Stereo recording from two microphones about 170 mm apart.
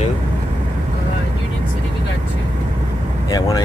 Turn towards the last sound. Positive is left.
turn(degrees=20)  # may be behind; listen again after turning